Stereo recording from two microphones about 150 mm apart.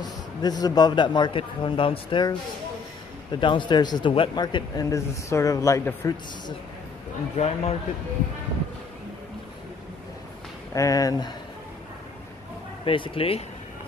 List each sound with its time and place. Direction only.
0.0 s a man's voice: 25° left (ahead or behind)
7.3 s a man's voice: 45° left (ahead or behind)
10.7 s a man's voice: 25° left (ahead or behind)
12.8 s speech: 35° left (ahead or behind)